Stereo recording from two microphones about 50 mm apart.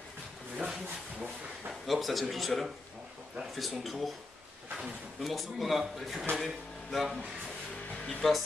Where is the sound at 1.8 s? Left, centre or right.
Centre.